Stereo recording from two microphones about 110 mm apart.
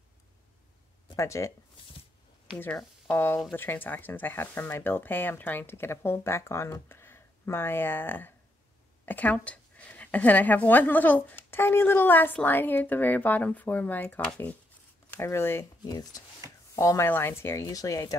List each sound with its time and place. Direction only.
1.1 s speech: 25° left (ahead or behind)
3.1 s speech: 20° left (ahead or behind)
15.8 s speech: 35° left (ahead or behind)